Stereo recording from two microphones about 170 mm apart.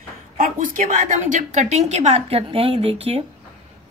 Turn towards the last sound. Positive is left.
turn(degrees=-35)  # may be behind; listen again after turning